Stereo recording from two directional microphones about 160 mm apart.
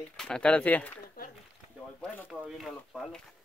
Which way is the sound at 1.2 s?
65° left (ahead or behind).